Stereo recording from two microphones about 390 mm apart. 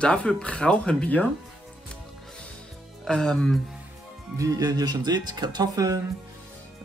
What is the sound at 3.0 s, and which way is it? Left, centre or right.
Speech, centre.